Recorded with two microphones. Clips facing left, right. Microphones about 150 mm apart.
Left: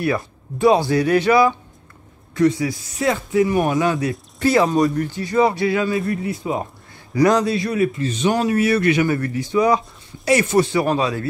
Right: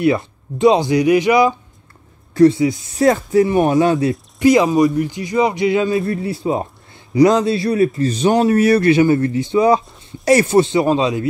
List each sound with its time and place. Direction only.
0.0 s speech: 20° right (ahead or behind)
2.3 s speech: 30° right (ahead or behind)
3.0 s speech: 40° right (ahead or behind)
3.4 s speech: 25° right (ahead or behind)
4.4 s a man's voice: 15° right (ahead or behind)